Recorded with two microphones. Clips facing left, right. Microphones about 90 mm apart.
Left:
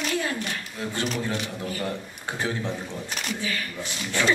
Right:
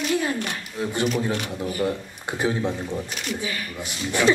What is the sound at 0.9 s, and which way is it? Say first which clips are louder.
Speech: right 4 dB; 20° right (ahead or behind).